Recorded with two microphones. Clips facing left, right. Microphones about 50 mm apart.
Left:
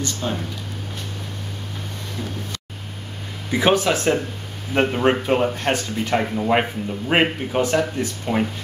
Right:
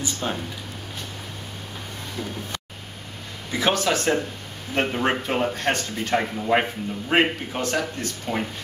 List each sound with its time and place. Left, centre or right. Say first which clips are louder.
0.0 s speech: left 2 dB; centre
3.5 s speech: left 4 dB; centre